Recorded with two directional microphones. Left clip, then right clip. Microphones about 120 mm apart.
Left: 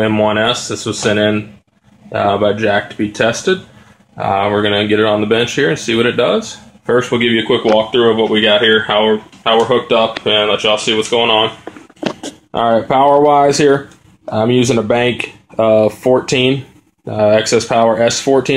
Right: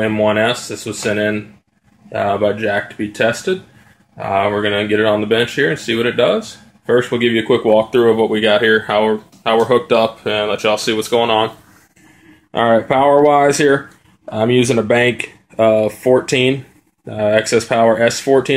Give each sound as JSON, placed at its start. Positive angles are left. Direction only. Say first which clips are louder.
{"t": 0.0, "sound": "speech", "louder": "left 2 dB", "side_deg": 0}
{"t": 4.2, "sound": "speech", "louder": "left 2 dB", "side_deg": 10}
{"t": 9.1, "sound": "speech", "louder": "left 3 dB", "side_deg": -30}
{"t": 12.4, "sound": "speech", "louder": "even", "side_deg": 0}